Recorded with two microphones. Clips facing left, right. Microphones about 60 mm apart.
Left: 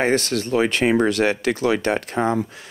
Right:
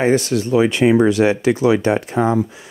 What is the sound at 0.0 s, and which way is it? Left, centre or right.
Speech, left.